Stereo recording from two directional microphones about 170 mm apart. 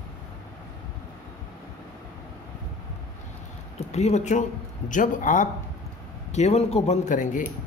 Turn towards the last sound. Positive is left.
turn(degrees=50)  # may be behind; listen again after turning